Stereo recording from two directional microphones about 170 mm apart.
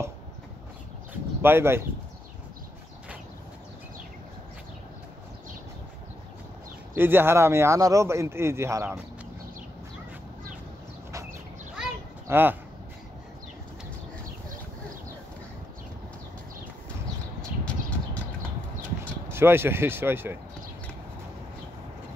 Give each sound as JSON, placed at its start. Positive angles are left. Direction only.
{"t": 1.4, "sound": "speech", "side_deg": -15}
{"t": 7.0, "sound": "speech", "side_deg": -15}
{"t": 12.3, "sound": "speech", "side_deg": -10}
{"t": 17.6, "sound": "a sound", "side_deg": 10}
{"t": 19.3, "sound": "speech", "side_deg": -15}